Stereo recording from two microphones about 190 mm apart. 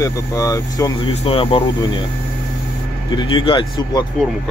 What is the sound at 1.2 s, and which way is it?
Speech, 30° left (ahead or behind).